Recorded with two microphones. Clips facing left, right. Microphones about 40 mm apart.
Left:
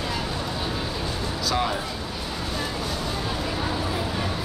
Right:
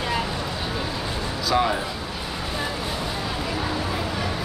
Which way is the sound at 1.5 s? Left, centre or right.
Centre.